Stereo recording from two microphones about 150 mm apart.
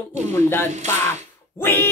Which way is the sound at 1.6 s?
15° left (ahead or behind).